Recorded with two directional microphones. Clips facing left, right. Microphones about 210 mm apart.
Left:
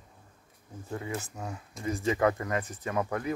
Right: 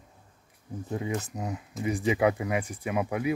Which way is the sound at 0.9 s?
20° right (ahead or behind).